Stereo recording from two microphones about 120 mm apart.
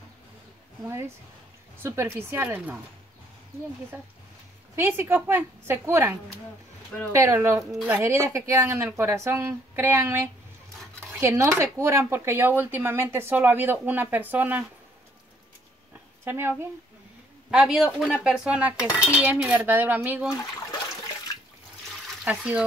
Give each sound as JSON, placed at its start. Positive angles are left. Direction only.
{"t": 0.8, "sound": "speech", "side_deg": -25}
{"t": 3.9, "sound": "speech", "side_deg": -20}
{"t": 16.3, "sound": "speech", "side_deg": -20}
{"t": 17.5, "sound": "speech", "side_deg": -5}
{"t": 22.2, "sound": "speech", "side_deg": -10}